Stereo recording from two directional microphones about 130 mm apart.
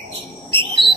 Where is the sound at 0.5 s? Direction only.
40° right (ahead or behind).